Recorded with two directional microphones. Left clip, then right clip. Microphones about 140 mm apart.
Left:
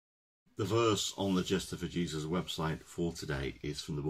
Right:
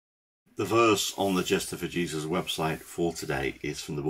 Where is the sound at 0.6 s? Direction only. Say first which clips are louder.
Right 7 dB; 10° left (ahead or behind).